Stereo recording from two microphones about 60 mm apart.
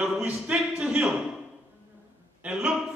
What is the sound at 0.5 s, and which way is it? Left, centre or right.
Speech, centre.